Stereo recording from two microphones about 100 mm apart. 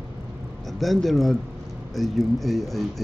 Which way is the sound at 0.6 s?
Centre (ahead or behind).